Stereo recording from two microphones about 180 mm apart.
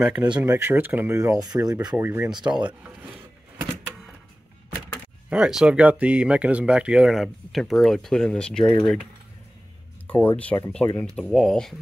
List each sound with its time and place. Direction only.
0.0 s speech: 5° right (ahead or behind)
5.3 s speech: 5° right (ahead or behind)
10.0 s speech: 10° left (ahead or behind)